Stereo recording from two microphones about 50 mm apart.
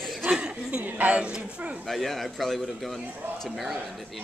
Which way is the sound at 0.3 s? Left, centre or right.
Right.